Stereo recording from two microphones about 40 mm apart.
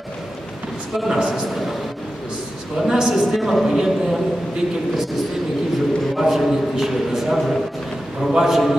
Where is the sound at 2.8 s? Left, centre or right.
Centre.